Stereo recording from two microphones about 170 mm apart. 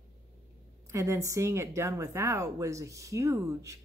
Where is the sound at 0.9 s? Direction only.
15° right (ahead or behind).